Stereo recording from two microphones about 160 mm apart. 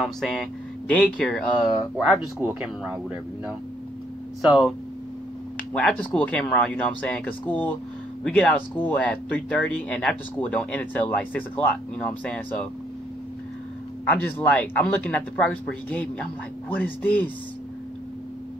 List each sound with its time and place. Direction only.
0.0 s speech: centre (ahead or behind)
2.3 s speech: 10° right (ahead or behind)
5.7 s speech: 10° left (ahead or behind)
14.0 s speech: 10° left (ahead or behind)